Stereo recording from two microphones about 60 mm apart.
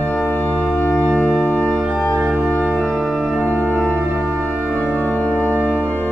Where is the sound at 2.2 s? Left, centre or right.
Right.